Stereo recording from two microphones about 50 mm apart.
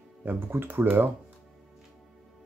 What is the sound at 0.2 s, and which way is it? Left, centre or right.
Speech, right.